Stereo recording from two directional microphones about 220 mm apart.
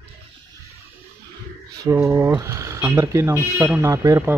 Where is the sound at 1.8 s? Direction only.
15° right (ahead or behind).